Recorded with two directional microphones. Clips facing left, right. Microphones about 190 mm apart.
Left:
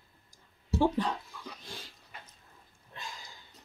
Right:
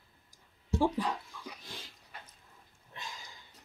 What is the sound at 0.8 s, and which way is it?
Dog, 10° right (ahead or behind).